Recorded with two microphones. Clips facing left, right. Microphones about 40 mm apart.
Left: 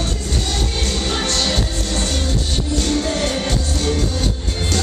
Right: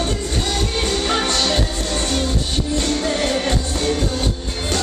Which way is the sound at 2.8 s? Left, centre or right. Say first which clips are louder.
Left 1 dB; centre.